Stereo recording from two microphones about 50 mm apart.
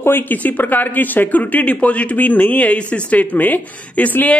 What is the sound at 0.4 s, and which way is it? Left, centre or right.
Speech, left.